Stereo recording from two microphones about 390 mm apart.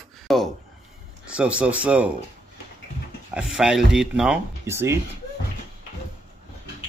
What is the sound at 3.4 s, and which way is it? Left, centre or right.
Speech, centre.